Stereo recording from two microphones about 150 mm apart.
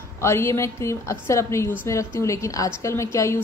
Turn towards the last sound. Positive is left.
turn(degrees=20)  # may be behind; listen again after turning